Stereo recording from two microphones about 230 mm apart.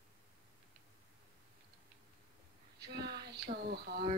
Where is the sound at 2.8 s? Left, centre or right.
Right.